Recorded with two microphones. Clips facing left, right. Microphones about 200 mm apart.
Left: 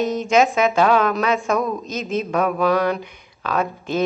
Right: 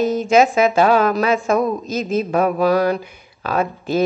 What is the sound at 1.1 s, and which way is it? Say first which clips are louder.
Speech: right 3 dB; 5° right (ahead or behind).